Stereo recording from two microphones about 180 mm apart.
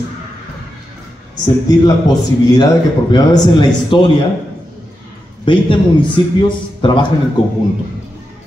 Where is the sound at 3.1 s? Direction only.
25° left (ahead or behind).